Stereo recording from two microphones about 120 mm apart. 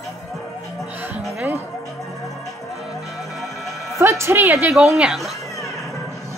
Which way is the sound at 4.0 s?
20° right (ahead or behind).